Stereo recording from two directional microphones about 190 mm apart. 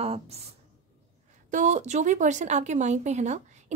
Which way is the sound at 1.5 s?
40° right (ahead or behind).